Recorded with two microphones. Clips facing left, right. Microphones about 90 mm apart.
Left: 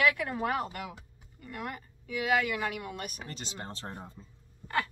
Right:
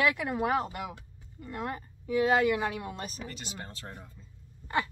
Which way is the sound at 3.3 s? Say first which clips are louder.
Left 1 dB; 30° left (ahead or behind).